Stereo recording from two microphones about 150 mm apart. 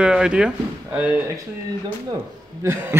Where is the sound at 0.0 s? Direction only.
5° right (ahead or behind).